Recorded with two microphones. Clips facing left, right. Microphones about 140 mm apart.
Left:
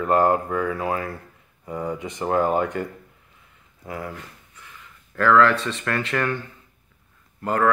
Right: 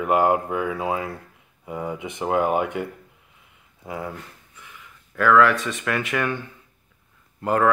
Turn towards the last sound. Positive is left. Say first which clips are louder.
# right 1 dB
turn(degrees=-15)  # may be behind; listen again after turning